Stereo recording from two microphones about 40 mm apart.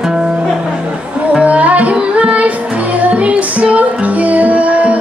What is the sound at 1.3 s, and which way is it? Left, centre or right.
Music, right.